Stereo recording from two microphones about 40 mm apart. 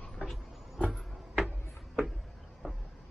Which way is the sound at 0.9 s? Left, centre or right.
Centre.